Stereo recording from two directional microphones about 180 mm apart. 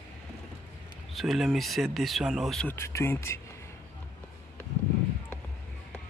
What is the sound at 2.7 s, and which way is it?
Speech, 15° left (ahead or behind).